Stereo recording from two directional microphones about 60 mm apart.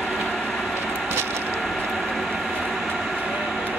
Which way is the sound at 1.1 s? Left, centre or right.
Right.